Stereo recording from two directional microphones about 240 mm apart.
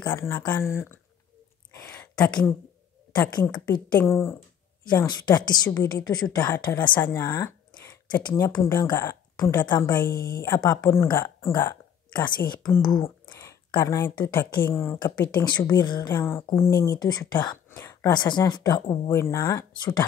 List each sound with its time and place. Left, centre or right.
0.0 s speech: centre
1.8 s a sound: centre
3.3 s speech: centre
10.1 s speech: left
10.4 s speech: centre
15.4 s speech: centre